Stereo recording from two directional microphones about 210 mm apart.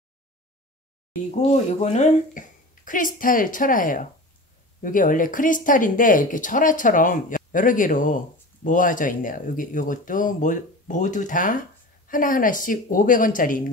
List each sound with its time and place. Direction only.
1.4 s speech: 35° left (ahead or behind)